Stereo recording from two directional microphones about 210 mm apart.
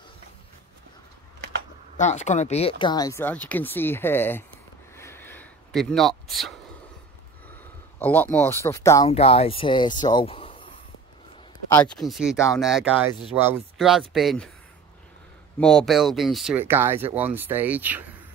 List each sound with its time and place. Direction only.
2.0 s speech: 35° left (ahead or behind); by 4.5 s 10° left (ahead or behind)
4.9 s a sound: 10° left (ahead or behind)
8.0 s speech: 10° left (ahead or behind)
9.1 s speech: 30° left (ahead or behind)
11.7 s speech: 5° left (ahead or behind)
15.6 s speech: centre (ahead or behind)